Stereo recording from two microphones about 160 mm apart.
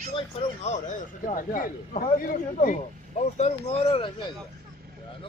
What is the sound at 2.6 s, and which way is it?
Speech, 50° left (ahead or behind).